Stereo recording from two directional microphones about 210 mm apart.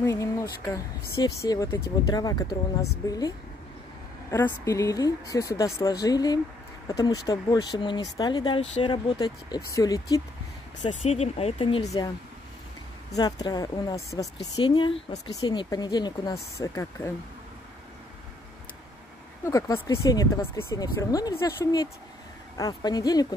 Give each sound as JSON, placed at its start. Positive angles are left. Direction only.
{"t": 0.0, "sound": "speech", "side_deg": 15}
{"t": 13.1, "sound": "speech", "side_deg": 20}
{"t": 19.4, "sound": "speech", "side_deg": 15}